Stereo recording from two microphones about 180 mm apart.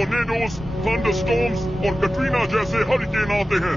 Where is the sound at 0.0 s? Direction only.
Centre (ahead or behind).